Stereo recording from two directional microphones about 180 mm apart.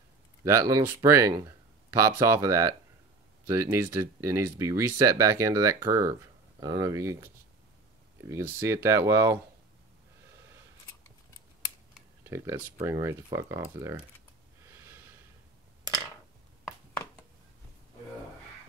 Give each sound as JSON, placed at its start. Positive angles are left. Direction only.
{"t": 0.4, "sound": "speech", "side_deg": -15}
{"t": 12.2, "sound": "speech", "side_deg": -15}
{"t": 14.7, "sound": "snort", "side_deg": -15}